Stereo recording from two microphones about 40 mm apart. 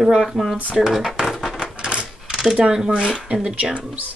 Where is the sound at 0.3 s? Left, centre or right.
Centre.